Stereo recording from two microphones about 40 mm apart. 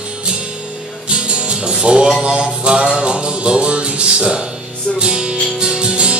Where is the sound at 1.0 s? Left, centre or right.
Right.